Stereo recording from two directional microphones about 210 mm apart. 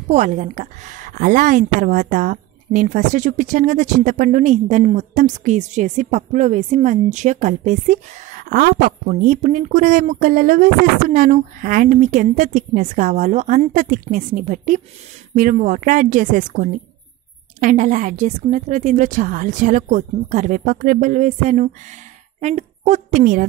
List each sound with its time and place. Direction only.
0.1 s a woman's voice: 35° right (ahead or behind)